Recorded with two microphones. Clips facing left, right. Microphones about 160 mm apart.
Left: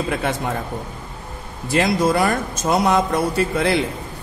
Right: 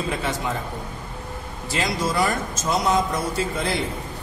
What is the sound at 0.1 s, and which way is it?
Speech, 60° left (ahead or behind).